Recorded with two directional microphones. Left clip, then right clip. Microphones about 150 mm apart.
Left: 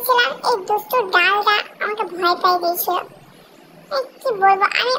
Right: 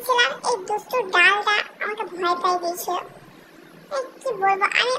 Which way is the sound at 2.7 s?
25° right (ahead or behind).